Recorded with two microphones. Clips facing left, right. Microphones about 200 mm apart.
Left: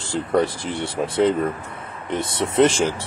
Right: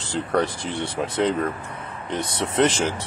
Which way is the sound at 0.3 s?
5° left (ahead or behind).